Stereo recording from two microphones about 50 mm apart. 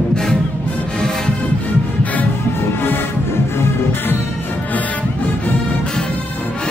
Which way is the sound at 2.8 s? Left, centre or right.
Left.